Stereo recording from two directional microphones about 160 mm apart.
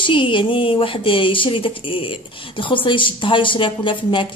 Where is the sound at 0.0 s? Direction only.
30° left (ahead or behind).